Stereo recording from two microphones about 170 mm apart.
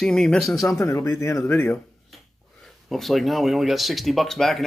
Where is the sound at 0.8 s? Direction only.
15° left (ahead or behind).